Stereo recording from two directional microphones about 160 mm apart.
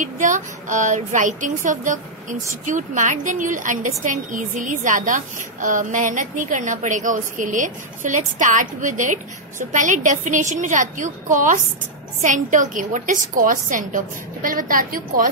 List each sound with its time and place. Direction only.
0.0 s a woman's voice: 50° right (ahead or behind)